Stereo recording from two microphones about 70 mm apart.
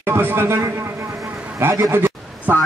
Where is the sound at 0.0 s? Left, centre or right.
Right.